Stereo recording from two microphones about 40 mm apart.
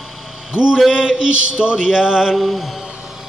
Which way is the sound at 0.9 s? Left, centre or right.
Centre.